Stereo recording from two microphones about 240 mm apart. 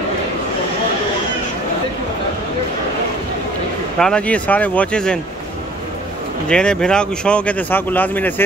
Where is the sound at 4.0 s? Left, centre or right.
Centre.